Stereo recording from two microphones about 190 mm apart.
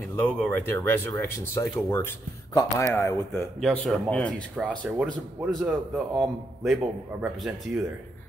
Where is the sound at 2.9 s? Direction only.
15° left (ahead or behind).